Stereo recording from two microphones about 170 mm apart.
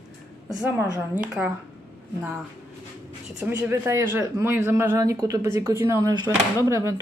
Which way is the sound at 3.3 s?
15° right (ahead or behind).